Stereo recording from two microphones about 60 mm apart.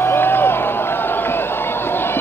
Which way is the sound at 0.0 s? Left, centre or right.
Left.